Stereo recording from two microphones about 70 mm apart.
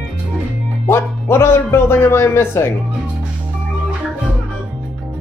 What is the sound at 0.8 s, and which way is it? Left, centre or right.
Music, left.